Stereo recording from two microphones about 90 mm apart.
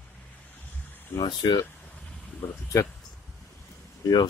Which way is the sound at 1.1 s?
55° left (ahead or behind).